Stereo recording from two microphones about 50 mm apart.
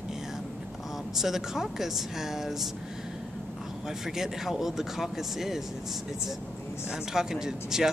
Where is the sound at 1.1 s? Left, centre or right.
Centre.